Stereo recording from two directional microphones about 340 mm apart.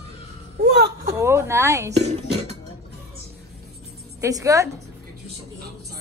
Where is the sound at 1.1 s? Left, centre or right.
Centre.